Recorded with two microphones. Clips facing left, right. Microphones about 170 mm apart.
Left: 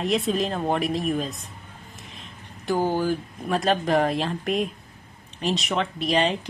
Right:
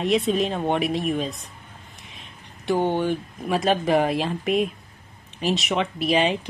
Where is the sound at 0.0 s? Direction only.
Centre (ahead or behind).